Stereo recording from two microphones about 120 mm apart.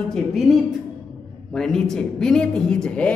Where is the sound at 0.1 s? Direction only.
Centre (ahead or behind).